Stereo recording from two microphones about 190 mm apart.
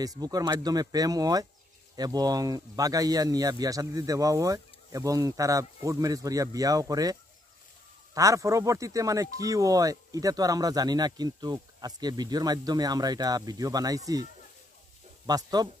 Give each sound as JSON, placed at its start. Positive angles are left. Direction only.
{"t": 0.0, "sound": "speech", "side_deg": -20}
{"t": 15.2, "sound": "speech", "side_deg": -20}